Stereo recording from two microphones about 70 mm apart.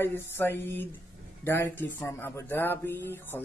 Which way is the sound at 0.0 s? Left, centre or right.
Left.